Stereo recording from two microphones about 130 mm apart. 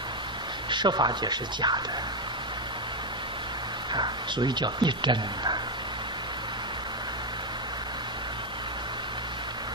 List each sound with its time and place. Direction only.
0.7 s speech: 35° right (ahead or behind)
3.9 s speech: 35° right (ahead or behind)